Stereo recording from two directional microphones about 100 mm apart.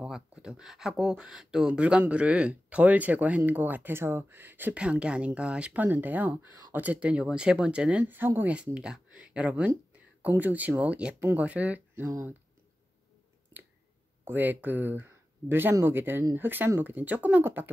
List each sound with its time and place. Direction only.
0.0 s speech: 10° right (ahead or behind)
14.2 s speech: 20° right (ahead or behind)